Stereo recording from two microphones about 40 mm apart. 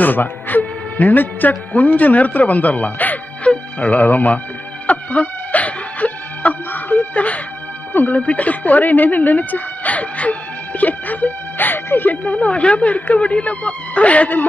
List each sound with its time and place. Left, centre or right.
0.0 s a man's voice: left
4.8 s music: left
7.2 s speech: left
7.9 s speech: left
8.2 s speech: left
12.3 s speech: left